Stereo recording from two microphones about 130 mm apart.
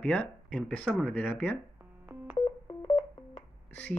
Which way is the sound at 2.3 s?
40° left (ahead or behind).